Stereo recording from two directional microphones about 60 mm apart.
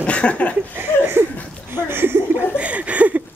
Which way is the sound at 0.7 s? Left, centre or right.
Right.